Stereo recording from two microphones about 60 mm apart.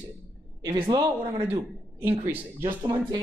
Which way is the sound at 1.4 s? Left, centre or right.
Right.